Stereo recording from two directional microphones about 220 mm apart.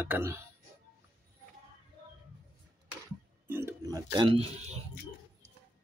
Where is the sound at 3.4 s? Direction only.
10° right (ahead or behind); by 4.7 s 25° right (ahead or behind).